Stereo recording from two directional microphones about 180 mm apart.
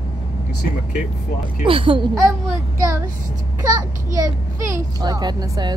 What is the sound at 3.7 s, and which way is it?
A child's voice, 20° right (ahead or behind).